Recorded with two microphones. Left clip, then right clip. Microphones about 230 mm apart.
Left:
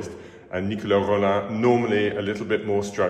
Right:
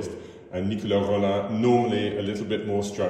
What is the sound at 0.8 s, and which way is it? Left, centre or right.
A man's voice, centre.